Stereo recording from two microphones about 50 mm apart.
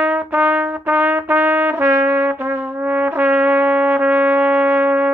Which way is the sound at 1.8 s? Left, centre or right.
Right.